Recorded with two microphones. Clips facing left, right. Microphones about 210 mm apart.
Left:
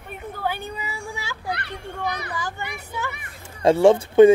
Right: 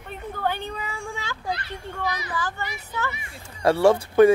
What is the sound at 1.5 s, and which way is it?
Children playing, 65° left (ahead or behind).